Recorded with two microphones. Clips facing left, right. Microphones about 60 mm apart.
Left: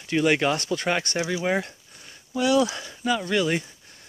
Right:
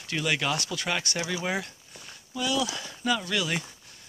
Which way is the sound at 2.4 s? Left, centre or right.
Left.